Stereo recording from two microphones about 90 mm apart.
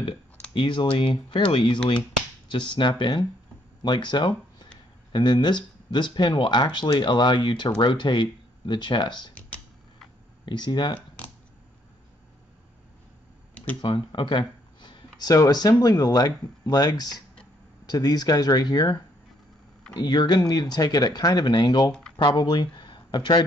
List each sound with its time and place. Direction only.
0.6 s speech: 65° left (ahead or behind)
2.5 s speech: 60° left (ahead or behind)
10.4 s speech: 55° left (ahead or behind)
13.9 s speech: 60° left (ahead or behind)
15.1 s speech: 45° left (ahead or behind)
20.0 s speech: 50° left (ahead or behind)